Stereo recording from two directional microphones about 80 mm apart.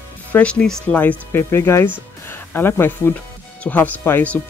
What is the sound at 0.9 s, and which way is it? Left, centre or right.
Speech, left.